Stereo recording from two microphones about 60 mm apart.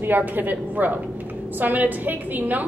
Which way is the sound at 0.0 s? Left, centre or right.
Right.